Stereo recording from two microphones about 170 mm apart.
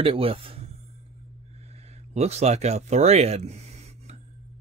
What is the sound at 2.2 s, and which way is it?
Speech, 40° right (ahead or behind).